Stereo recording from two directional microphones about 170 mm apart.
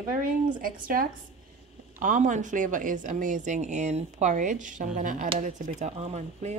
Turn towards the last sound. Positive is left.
turn(degrees=-40)  # may be behind; listen again after turning